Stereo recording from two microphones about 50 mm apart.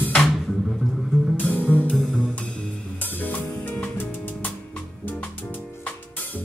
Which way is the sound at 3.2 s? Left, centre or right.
Left.